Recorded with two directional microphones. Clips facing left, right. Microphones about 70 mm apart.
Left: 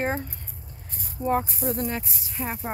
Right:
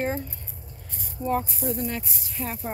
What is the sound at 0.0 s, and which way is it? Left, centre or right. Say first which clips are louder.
Speech: left 1 dB; left.